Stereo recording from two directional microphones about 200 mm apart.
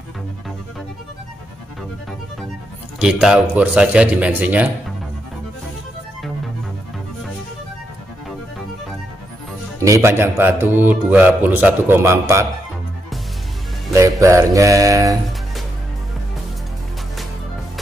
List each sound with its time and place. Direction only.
3.0 s speech: 5° right (ahead or behind)
9.8 s speech: 15° right (ahead or behind)
13.9 s speech: 15° right (ahead or behind)